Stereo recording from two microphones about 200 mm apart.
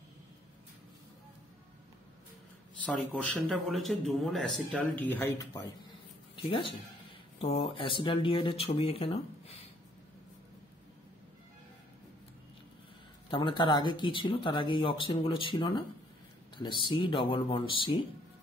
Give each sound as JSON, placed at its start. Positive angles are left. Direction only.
{"t": 2.8, "sound": "speech", "side_deg": 5}
{"t": 6.3, "sound": "speech", "side_deg": 25}
{"t": 13.3, "sound": "speech", "side_deg": 25}